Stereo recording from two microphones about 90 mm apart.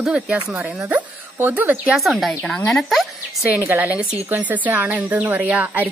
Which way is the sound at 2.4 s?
10° left (ahead or behind).